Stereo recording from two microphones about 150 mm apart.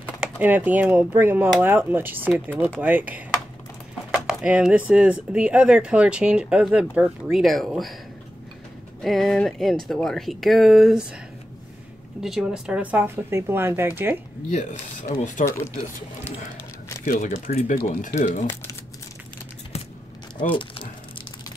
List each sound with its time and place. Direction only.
0.2 s speech: 10° right (ahead or behind)
2.5 s speech: 10° left (ahead or behind)
2.8 s speech: 10° right (ahead or behind)
9.0 s speech: centre (ahead or behind)
12.2 s speech: 5° right (ahead or behind)
14.5 s speech: 50° left (ahead or behind)
17.0 s speech: 65° left (ahead or behind)